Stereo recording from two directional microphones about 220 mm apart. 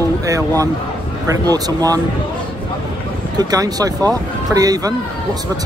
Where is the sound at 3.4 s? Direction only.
15° right (ahead or behind).